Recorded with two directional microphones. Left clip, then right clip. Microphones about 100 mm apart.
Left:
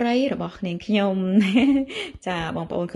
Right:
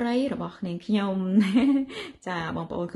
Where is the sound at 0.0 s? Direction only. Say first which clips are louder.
Left 5 dB; 25° left (ahead or behind).